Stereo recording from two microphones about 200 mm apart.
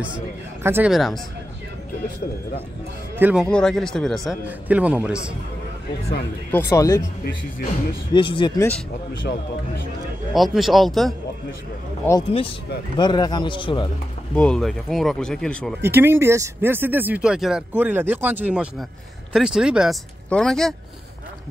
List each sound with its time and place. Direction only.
0.7 s speech: 10° right (ahead or behind)
0.9 s a man's voice: centre (ahead or behind)
3.2 s speech: 10° right (ahead or behind)
3.4 s a man's voice: 5° left (ahead or behind)
6.7 s speech: 15° left (ahead or behind)
8.1 s speech: 25° left (ahead or behind)
10.3 s a man's voice: centre (ahead or behind)
12.1 s speech: 25° left (ahead or behind)
14.3 s a man's voice: 5° left (ahead or behind)
15.8 s a man's voice: 10° right (ahead or behind)